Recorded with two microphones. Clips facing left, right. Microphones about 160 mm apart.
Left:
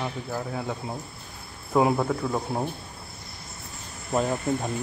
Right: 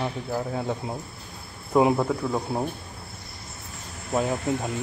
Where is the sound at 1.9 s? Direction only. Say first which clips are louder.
Right 1 dB; centre (ahead or behind).